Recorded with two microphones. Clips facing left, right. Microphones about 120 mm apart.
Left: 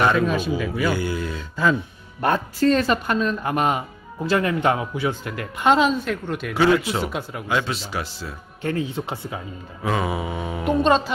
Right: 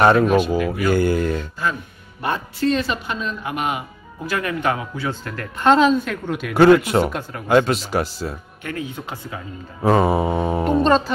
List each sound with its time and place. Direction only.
0.0 s speech: 40° right (ahead or behind)
2.2 s speech: 40° left (ahead or behind)
4.3 s speech: 25° left (ahead or behind)
5.7 s a woman's voice: 5° left (ahead or behind)
6.5 s speech: 50° right (ahead or behind)
7.1 s a woman's voice: 5° left (ahead or behind)
7.4 s speech: 50° right (ahead or behind)
8.6 s speech: 30° left (ahead or behind)
9.8 s mantra: 40° right (ahead or behind)
10.8 s a woman's voice: 5° left (ahead or behind)